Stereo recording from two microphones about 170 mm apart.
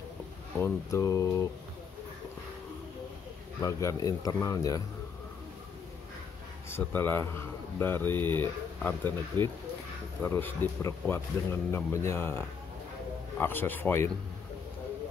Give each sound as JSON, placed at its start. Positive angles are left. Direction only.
{"t": 0.6, "sound": "speech", "side_deg": 20}
{"t": 3.6, "sound": "speech", "side_deg": 20}
{"t": 6.7, "sound": "speech", "side_deg": 10}